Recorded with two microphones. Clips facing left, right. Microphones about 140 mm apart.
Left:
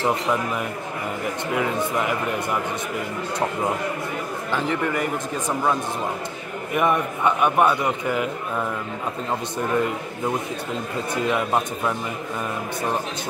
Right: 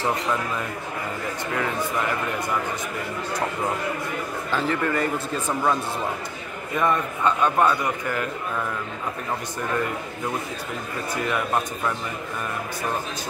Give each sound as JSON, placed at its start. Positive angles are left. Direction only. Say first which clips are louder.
{"t": 0.0, "sound": "a man's voice", "louder": "left 2 dB", "side_deg": 15}
{"t": 4.5, "sound": "a man's voice", "louder": "even", "side_deg": 15}